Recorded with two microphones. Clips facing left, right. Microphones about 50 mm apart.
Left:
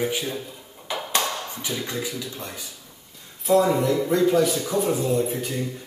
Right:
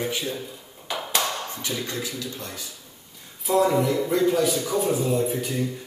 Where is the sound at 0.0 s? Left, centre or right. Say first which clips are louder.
Left 2 dB; centre.